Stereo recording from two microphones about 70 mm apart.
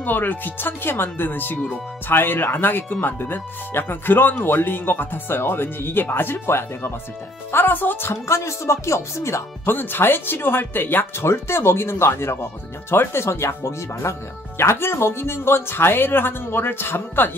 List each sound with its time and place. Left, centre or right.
0.0 s speech: left
9.8 s speech: left